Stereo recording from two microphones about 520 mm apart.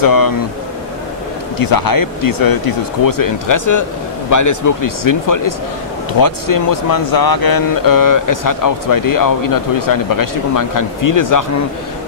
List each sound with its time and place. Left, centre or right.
0.0 s speech: left
1.6 s speech: left